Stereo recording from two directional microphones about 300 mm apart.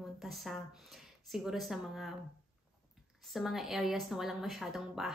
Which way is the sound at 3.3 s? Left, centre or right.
Centre.